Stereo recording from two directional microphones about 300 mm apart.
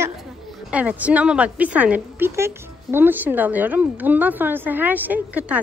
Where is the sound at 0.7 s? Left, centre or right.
Centre.